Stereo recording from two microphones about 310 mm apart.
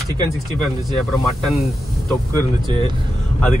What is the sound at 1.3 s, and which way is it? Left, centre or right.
Speech, centre.